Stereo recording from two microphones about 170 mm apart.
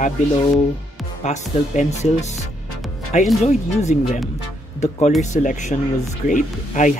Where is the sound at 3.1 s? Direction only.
45° left (ahead or behind).